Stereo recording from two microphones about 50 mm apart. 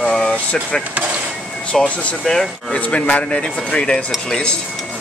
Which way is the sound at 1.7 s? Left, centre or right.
Left.